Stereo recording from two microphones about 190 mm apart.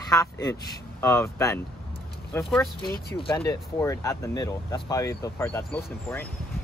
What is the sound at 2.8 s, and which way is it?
Speech, 55° left (ahead or behind).